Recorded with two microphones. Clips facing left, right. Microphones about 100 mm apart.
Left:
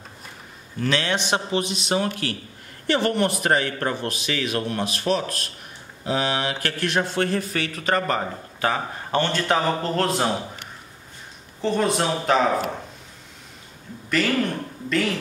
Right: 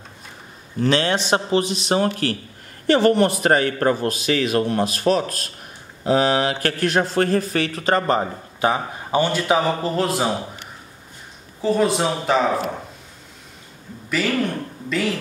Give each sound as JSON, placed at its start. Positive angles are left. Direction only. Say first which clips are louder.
{"t": 0.7, "sound": "a man's voice", "louder": "right 4 dB", "side_deg": -35}
{"t": 8.5, "sound": "a man's voice", "louder": "right 4 dB", "side_deg": -20}
{"t": 11.6, "sound": "speech", "louder": "right 3 dB", "side_deg": -5}
{"t": 14.2, "sound": "speech", "louder": "right 1 dB", "side_deg": -5}